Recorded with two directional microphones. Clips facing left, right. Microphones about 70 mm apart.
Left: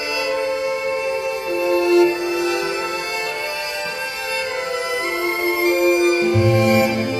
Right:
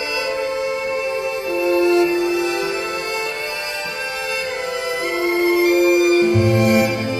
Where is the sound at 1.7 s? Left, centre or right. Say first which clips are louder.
Left 1 dB; right.